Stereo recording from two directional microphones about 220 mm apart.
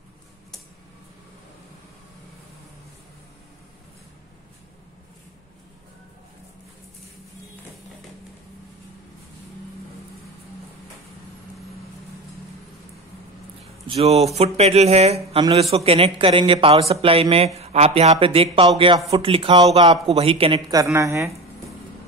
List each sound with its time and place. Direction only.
13.8 s a man's voice: 30° right (ahead or behind)
20.8 s a woman's voice: 15° right (ahead or behind)